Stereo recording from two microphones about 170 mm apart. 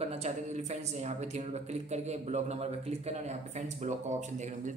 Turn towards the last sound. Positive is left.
turn(degrees=-45)  # may be behind; listen again after turning